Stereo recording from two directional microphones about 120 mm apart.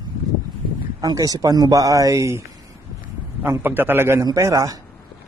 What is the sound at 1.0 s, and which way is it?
A man's voice, 30° right (ahead or behind).